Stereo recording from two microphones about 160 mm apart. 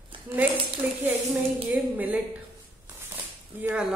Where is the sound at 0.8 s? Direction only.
10° right (ahead or behind).